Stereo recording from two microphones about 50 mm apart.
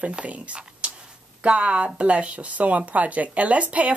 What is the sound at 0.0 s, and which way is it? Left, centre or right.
Speech, right.